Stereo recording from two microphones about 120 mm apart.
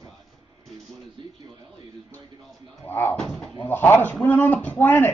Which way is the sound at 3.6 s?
20° left (ahead or behind).